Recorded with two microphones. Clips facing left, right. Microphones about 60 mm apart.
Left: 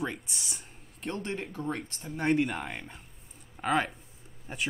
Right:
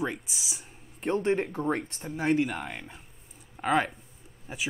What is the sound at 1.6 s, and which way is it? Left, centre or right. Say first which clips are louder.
Speech: right 5 dB; right.